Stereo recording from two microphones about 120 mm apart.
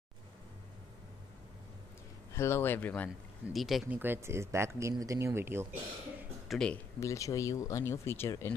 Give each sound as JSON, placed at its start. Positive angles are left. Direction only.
{"t": 2.3, "sound": "speech", "side_deg": 20}
{"t": 3.5, "sound": "speech", "side_deg": 0}
{"t": 3.9, "sound": "speech", "side_deg": -20}
{"t": 6.5, "sound": "speech", "side_deg": 5}
{"t": 7.0, "sound": "speech", "side_deg": 25}